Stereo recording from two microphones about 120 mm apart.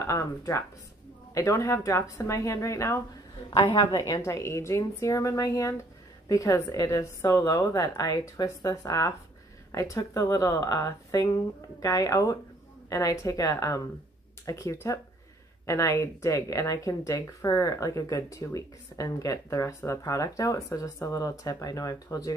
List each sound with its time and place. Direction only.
0.0 s speech: 25° left (ahead or behind)